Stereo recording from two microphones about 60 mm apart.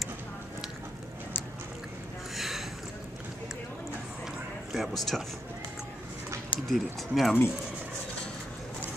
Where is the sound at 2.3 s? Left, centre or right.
Centre.